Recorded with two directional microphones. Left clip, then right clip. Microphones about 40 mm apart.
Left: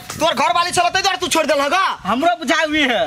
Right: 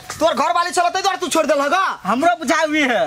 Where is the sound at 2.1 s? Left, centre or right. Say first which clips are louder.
Right 2 dB; right.